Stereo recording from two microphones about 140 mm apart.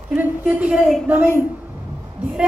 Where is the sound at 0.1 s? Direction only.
15° right (ahead or behind).